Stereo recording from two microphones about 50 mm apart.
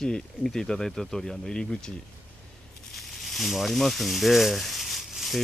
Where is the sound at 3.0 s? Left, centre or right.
Centre.